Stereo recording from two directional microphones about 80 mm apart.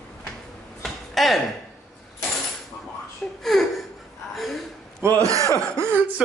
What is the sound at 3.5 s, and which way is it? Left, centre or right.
Laughter, centre.